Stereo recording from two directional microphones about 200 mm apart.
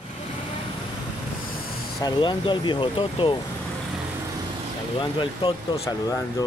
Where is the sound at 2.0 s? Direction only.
20° left (ahead or behind).